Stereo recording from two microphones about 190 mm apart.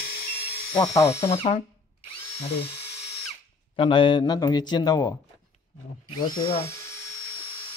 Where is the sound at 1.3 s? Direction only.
30° left (ahead or behind).